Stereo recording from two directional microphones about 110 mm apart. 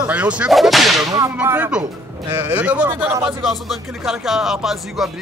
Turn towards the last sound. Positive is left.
turn(degrees=-5)  # may be behind; listen again after turning